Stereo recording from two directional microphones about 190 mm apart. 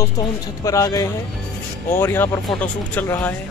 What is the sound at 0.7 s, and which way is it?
Speech, 15° left (ahead or behind).